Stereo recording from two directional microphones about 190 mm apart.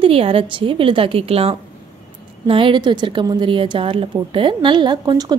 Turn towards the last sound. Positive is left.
turn(degrees=-20)  # may be behind; listen again after turning